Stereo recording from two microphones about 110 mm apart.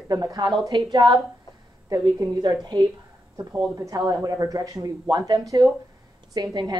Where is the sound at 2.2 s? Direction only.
30° right (ahead or behind).